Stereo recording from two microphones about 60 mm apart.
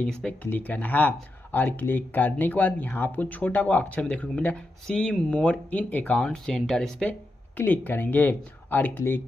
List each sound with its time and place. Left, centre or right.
0.3 s speech: left
6.1 s speech: centre
7.5 s speech: left